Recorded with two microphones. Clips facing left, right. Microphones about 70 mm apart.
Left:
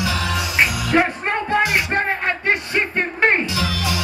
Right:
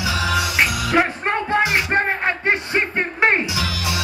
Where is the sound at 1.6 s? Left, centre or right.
Centre.